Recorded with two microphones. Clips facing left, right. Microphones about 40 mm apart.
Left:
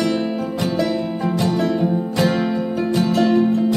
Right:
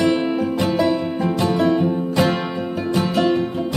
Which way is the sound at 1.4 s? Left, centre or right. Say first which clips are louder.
Right 2 dB; centre.